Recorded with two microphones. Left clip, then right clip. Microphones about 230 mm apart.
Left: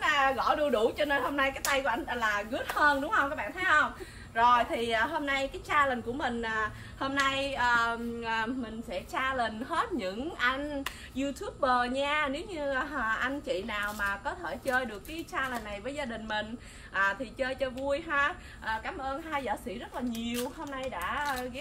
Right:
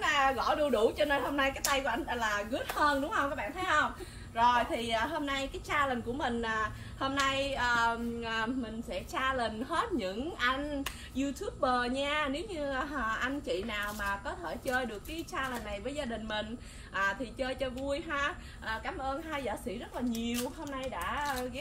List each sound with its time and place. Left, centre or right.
0.0 s a woman's voice: centre